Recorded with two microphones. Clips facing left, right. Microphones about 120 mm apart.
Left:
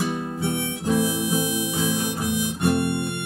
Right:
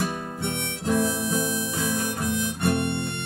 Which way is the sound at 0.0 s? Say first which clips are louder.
Left 3 dB; 5° left (ahead or behind).